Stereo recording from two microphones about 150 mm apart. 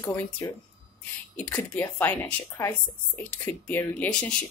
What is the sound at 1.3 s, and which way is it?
A woman's voice, 10° left (ahead or behind).